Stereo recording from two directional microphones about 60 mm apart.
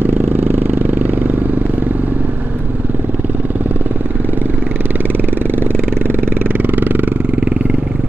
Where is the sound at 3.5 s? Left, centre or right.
Right.